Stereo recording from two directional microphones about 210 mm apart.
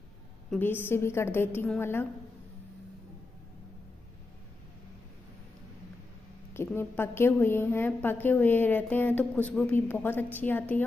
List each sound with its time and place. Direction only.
0.5 s a woman's voice: 10° left (ahead or behind)
6.5 s a woman's voice: 10° left (ahead or behind)